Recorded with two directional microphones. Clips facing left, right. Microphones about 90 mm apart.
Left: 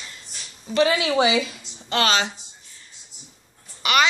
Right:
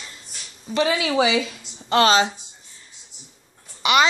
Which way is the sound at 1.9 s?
30° right (ahead or behind).